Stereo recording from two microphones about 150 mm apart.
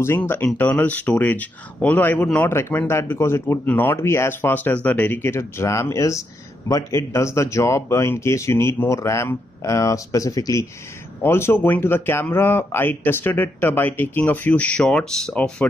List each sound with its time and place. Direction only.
0.0 s speech: 15° left (ahead or behind)